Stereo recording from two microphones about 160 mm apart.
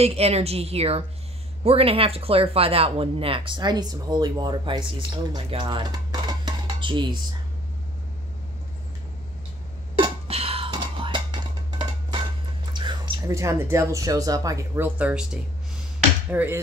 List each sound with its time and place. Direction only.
0.0 s speech: 40° right (ahead or behind)
5.3 s music: 30° right (ahead or behind)
9.9 s whispering: 35° right (ahead or behind)
12.7 s speech: 30° right (ahead or behind)
15.0 s speech: 10° right (ahead or behind)
16.3 s speech: 10° right (ahead or behind)